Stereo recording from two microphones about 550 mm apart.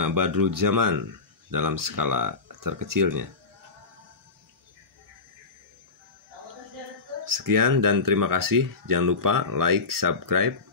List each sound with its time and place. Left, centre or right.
0.0 s speech: right
7.2 s speech: right